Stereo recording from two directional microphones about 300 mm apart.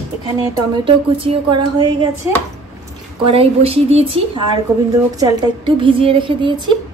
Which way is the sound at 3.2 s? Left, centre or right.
Centre.